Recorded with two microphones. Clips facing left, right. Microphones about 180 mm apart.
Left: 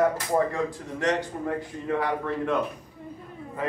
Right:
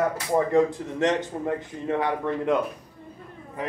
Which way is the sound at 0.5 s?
20° right (ahead or behind).